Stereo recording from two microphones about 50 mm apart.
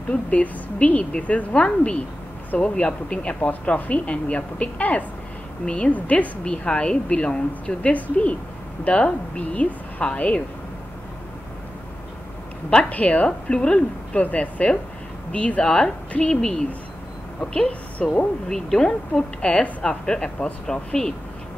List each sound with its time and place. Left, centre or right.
0.1 s a woman's voice: left
3.3 s a woman's voice: left
12.6 s a woman's voice: left
13.5 s a woman's voice: centre
18.5 s speech: centre
19.4 s a woman's voice: left